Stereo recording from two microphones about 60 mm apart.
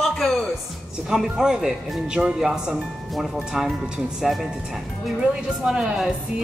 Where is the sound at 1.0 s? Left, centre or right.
Centre.